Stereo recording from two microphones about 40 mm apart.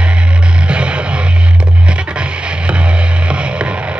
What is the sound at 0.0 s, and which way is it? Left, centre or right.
Music, right.